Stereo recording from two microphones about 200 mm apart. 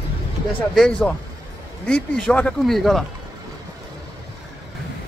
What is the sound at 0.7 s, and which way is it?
Speech, 5° left (ahead or behind).